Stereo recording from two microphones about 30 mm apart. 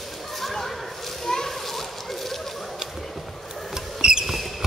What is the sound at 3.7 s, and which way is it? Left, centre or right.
Rodents, centre.